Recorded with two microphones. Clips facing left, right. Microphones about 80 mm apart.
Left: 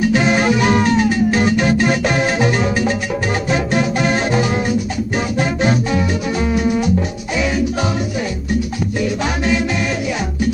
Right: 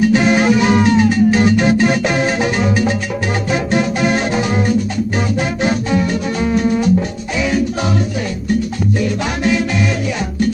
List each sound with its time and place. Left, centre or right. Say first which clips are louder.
0.1 s music: right 2 dB; centre
9.0 s music: left 1 dB; centre